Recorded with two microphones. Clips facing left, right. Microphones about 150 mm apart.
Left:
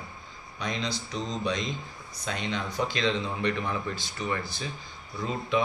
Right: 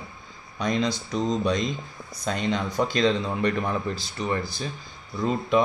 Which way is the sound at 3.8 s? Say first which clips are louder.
Right 4 dB; 35° right (ahead or behind).